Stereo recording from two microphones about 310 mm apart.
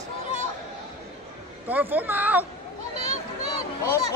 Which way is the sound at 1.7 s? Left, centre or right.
Centre.